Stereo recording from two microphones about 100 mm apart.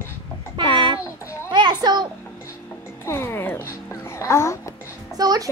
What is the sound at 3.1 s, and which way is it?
Speech, 25° left (ahead or behind).